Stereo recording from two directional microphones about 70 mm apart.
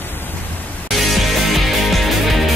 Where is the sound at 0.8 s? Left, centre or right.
Centre.